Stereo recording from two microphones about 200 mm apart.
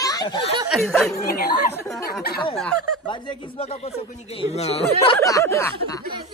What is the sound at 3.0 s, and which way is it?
Speech, 25° left (ahead or behind).